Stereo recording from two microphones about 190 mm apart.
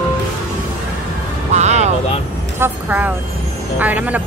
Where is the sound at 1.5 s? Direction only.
35° right (ahead or behind).